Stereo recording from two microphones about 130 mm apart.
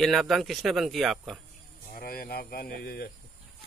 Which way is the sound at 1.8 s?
90° left.